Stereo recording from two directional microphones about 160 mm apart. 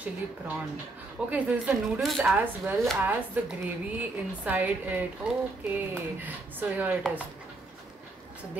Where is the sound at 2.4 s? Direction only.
10° right (ahead or behind).